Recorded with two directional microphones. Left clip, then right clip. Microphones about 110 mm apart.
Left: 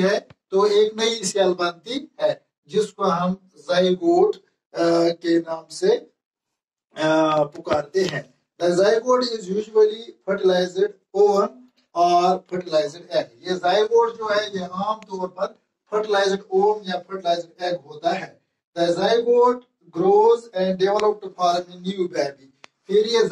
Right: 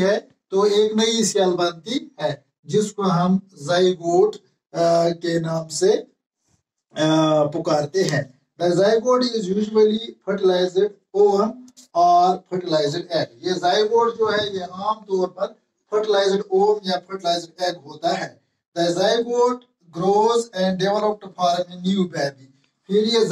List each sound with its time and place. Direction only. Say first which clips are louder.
0.5 s speech: even; 35° right (ahead or behind); by 3.2 s 20° right (ahead or behind)
3.6 s a sound: even; 25° right (ahead or behind)
4.6 s speech: right 1 dB; 50° right (ahead or behind)
5.2 s speech: left 1 dB; 35° right (ahead or behind)
7.2 s speech: right 2 dB; 40° right (ahead or behind)
10.3 s speech: right 1 dB; 30° right (ahead or behind)
16.2 s a sound: even; 30° right (ahead or behind)